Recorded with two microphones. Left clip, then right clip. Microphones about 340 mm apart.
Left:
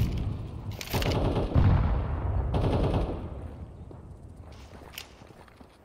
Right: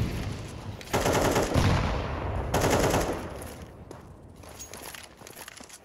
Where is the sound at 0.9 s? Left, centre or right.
Right.